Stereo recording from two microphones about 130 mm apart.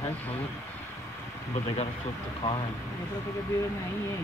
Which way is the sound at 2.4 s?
35° left (ahead or behind).